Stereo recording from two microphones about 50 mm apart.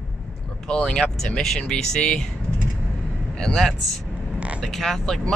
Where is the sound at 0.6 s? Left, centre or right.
Centre.